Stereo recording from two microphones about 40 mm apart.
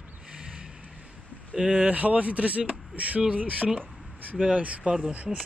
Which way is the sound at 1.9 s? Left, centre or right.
Right.